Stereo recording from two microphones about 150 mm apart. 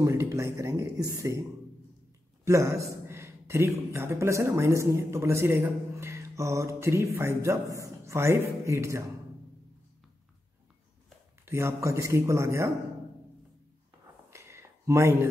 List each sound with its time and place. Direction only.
0.0 s speech: 20° right (ahead or behind)
2.4 s speech: 20° right (ahead or behind)
11.4 s speech: 20° right (ahead or behind)
14.3 s a sound: 20° right (ahead or behind)